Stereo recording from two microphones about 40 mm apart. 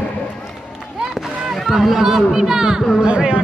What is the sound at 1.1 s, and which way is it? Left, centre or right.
Speech, centre.